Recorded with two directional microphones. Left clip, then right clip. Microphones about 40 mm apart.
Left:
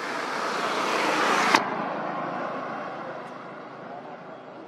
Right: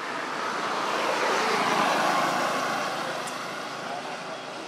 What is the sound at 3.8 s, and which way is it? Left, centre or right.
Vehicle, right.